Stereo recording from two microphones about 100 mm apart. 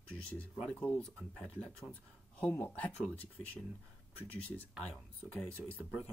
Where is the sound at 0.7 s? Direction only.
15° left (ahead or behind).